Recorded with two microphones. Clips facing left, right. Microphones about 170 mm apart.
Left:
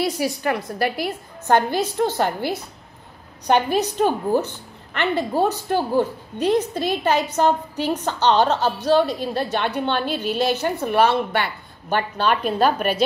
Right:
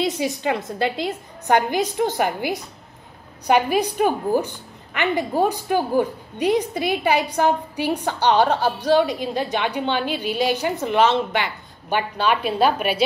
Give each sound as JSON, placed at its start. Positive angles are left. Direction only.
{"t": 0.0, "sound": "a woman's voice", "side_deg": -20}
{"t": 12.0, "sound": "a woman's voice", "side_deg": -5}